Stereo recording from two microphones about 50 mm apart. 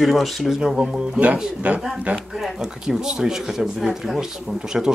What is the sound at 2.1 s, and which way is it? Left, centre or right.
Speech, centre.